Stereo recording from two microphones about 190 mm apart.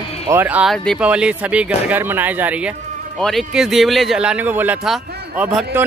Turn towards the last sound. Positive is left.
turn(degrees=-10)  # may be behind; listen again after turning